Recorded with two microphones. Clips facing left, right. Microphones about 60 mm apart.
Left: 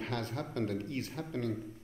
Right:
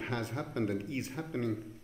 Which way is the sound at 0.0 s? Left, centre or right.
Centre.